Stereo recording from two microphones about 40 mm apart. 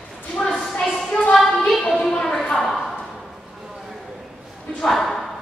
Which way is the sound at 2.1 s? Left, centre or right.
Left.